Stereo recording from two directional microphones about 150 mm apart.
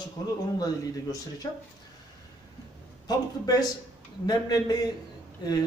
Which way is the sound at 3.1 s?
25° left (ahead or behind).